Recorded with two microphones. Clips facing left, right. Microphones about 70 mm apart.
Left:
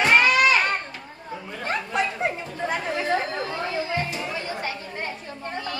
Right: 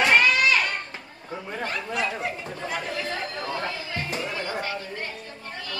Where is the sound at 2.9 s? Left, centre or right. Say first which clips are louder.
Left 6 dB; left.